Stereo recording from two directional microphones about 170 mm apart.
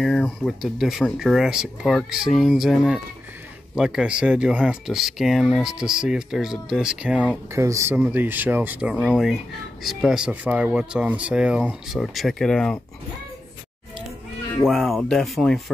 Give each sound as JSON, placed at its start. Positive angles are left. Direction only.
{"t": 0.0, "sound": "speech", "side_deg": 5}
{"t": 7.5, "sound": "speech", "side_deg": -15}
{"t": 14.6, "sound": "speech", "side_deg": 0}